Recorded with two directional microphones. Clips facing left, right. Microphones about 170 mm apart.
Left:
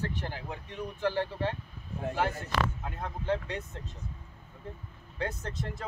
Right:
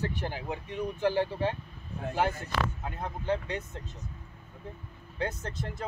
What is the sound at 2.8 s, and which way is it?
Speech, centre (ahead or behind).